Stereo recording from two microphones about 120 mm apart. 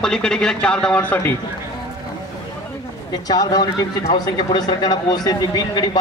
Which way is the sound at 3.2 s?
35° left (ahead or behind).